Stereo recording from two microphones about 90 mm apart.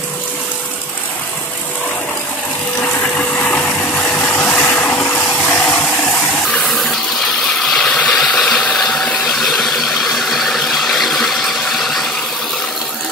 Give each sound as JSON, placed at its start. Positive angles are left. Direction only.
{"t": 2.8, "sound": "a sound", "side_deg": 15}
{"t": 6.4, "sound": "water", "side_deg": 10}
{"t": 7.7, "sound": "ratchet", "side_deg": 5}